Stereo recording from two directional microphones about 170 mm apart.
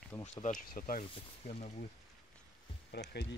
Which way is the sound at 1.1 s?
40° left (ahead or behind).